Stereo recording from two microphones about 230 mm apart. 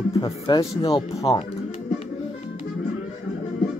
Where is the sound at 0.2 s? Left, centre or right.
Left.